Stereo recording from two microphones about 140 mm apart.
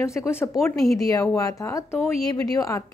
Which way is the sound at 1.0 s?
25° left (ahead or behind).